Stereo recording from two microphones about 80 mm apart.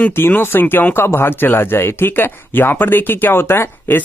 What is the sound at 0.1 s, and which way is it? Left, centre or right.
Speech, left.